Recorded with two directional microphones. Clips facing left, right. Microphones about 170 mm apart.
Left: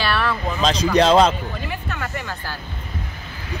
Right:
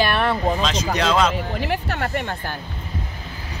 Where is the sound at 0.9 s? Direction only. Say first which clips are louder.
Left 6 dB; 35° left (ahead or behind).